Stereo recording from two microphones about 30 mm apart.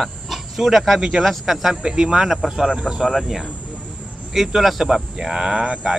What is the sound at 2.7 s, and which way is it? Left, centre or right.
Speech, right.